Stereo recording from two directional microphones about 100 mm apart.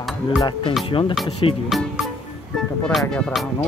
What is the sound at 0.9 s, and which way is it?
Speech, 60° left (ahead or behind).